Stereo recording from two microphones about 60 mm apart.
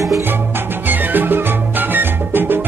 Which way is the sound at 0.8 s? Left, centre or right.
Right.